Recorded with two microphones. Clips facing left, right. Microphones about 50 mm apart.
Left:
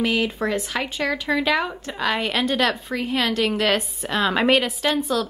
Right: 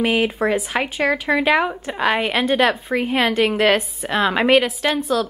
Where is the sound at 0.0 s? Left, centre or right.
Right.